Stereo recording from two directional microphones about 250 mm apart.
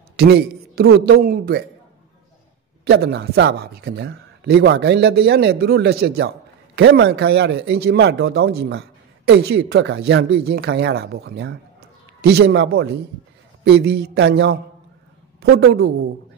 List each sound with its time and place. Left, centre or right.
0.1 s a sound: right
0.9 s a man's voice: right
2.8 s a man's voice: right